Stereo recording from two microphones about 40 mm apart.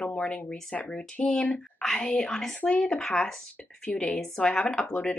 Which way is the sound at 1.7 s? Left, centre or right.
Centre.